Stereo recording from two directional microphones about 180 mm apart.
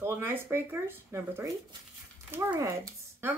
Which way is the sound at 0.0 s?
15° right (ahead or behind).